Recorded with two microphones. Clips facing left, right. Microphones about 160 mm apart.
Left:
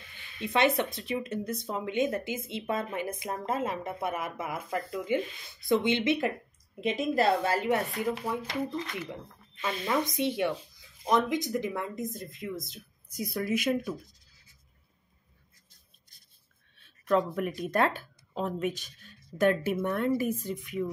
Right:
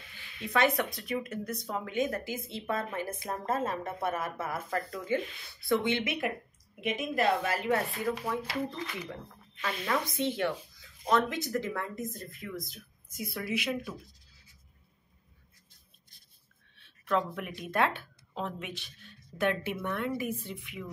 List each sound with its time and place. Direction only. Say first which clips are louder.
0.5 s speech: left 2 dB; 25° left (ahead or behind)
9.6 s a woman's voice: left 3 dB; 20° left (ahead or behind)
13.1 s speech: left 4 dB; 40° left (ahead or behind)
16.7 s speech: left 4 dB; 45° left (ahead or behind)